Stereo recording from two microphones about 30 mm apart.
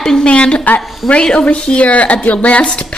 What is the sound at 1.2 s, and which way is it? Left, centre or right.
Speech, left.